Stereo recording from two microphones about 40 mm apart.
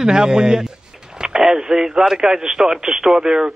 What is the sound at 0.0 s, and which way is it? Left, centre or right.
Speech, centre.